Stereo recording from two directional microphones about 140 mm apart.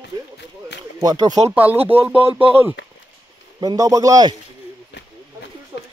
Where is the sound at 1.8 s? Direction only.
45° right (ahead or behind).